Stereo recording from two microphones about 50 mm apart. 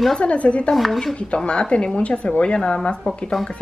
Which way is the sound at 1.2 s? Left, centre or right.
Left.